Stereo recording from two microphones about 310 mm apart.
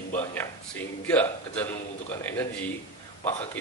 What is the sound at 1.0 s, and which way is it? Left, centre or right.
Speech, centre.